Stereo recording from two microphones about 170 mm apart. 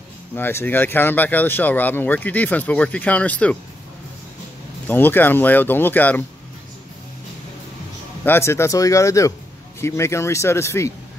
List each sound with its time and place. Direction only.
0.4 s speech: 15° left (ahead or behind)
4.8 s speech: 10° left (ahead or behind)
8.3 s speech: 15° left (ahead or behind)